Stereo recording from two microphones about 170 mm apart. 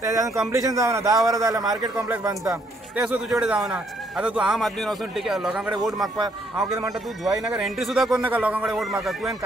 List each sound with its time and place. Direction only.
0.0 s speech: 20° right (ahead or behind)
2.5 s speech: 5° right (ahead or behind)
7.2 s speech: 5° right (ahead or behind)